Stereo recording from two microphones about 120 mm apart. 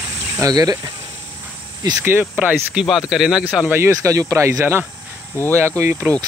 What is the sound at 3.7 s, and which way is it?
Speech, 20° right (ahead or behind).